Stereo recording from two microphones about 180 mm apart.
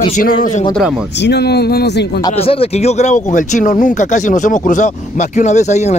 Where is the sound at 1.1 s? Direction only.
70° left (ahead or behind).